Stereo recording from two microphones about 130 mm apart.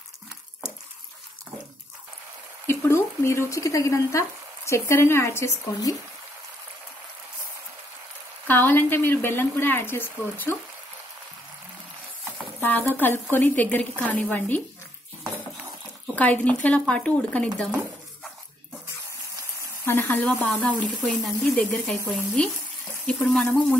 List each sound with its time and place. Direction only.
2.6 s speech: 20° left (ahead or behind)
8.5 s speech: 15° left (ahead or behind)
12.5 s speech: 15° left (ahead or behind)
16.2 s speech: 10° left (ahead or behind)
19.8 s speech: 15° left (ahead or behind); by 21.5 s centre (ahead or behind)
21.5 s speech: 10° left (ahead or behind)